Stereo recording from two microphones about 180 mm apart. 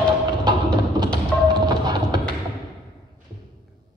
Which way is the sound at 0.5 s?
25° right (ahead or behind).